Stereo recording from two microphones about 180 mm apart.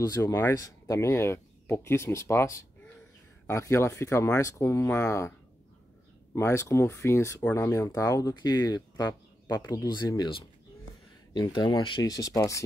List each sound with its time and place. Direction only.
0.0 s speech: 20° left (ahead or behind)
6.3 s speech: 15° left (ahead or behind)